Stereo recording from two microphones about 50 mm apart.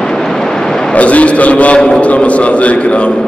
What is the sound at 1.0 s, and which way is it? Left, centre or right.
A man's voice, left.